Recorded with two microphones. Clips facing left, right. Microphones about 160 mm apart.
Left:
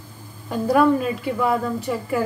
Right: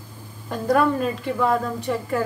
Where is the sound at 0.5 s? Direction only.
5° left (ahead or behind).